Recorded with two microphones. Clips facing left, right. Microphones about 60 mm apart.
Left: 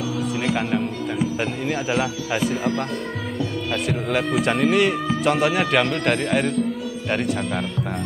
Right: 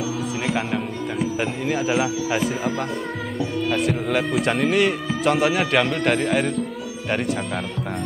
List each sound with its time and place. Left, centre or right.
0.5 s speech: centre